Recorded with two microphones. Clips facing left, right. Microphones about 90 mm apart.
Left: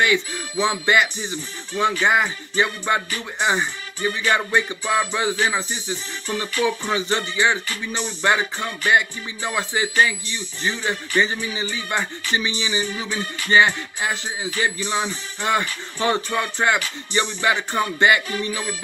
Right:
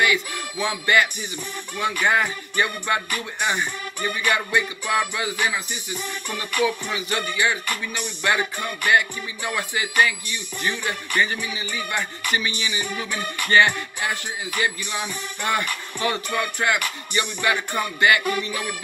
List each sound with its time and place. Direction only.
0.0 s music: 25° left (ahead or behind)